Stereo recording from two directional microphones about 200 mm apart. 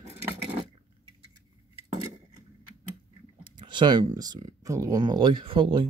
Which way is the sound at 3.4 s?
25° right (ahead or behind).